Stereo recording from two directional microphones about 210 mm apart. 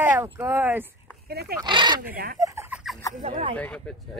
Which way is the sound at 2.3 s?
15° right (ahead or behind).